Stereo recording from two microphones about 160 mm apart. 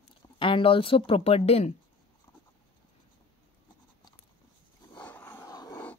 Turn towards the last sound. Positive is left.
turn(degrees=25)  # may be behind; listen again after turning